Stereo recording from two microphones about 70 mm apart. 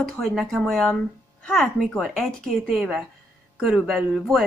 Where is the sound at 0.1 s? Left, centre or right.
Centre.